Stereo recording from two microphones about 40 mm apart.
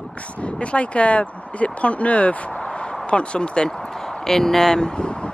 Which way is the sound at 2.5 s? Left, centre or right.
Centre.